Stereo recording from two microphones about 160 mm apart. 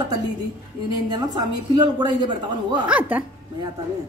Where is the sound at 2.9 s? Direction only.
10° right (ahead or behind).